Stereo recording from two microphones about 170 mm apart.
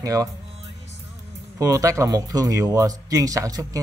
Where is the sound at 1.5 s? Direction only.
20° right (ahead or behind).